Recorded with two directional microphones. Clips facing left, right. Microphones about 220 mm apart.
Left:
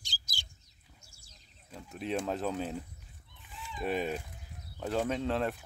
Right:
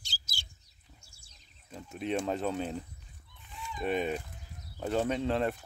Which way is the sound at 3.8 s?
Centre (ahead or behind).